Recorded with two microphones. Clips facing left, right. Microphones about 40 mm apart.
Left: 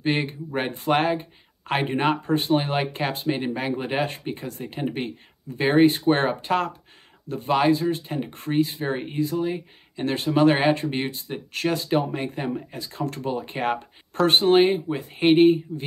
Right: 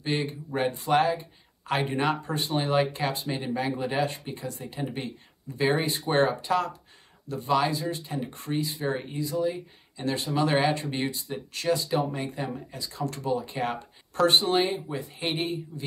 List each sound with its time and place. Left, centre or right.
0.0 s speech: left